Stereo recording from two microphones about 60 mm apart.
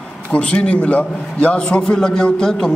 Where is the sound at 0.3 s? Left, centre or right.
Centre.